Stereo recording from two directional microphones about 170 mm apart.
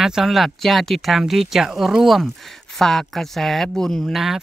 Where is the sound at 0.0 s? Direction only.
Centre (ahead or behind).